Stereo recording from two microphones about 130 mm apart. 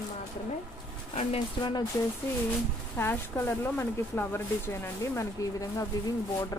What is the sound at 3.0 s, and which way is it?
A woman's voice, 15° left (ahead or behind).